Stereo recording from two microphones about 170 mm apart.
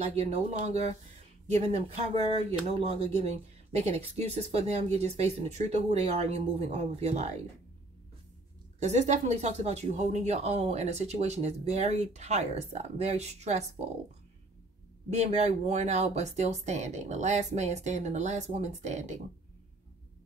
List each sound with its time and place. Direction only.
0.0 s speech: 40° right (ahead or behind)
8.7 s speech: 40° right (ahead or behind)
15.0 s speech: 40° right (ahead or behind)